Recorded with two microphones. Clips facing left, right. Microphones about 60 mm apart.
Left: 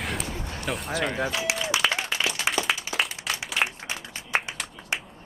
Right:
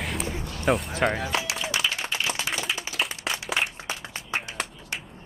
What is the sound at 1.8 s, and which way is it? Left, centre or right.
Applause, left.